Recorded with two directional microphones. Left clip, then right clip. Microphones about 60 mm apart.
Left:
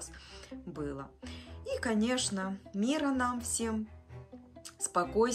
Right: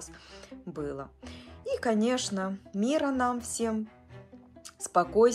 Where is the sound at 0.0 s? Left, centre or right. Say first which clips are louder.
Right 2 dB; left.